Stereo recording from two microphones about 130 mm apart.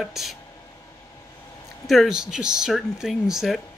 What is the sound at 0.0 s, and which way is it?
Speech, centre (ahead or behind).